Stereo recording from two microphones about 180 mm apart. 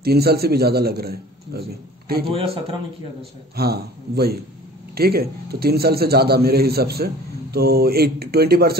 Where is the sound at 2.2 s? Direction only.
30° right (ahead or behind).